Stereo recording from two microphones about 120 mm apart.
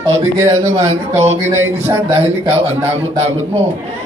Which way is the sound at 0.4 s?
20° right (ahead or behind).